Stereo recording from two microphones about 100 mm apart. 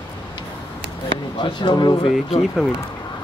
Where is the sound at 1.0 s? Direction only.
55° left (ahead or behind).